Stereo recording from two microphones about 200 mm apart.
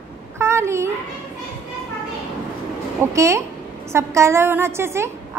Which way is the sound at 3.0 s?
15° right (ahead or behind).